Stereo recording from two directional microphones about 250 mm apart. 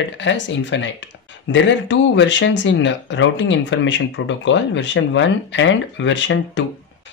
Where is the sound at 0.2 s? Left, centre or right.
Left.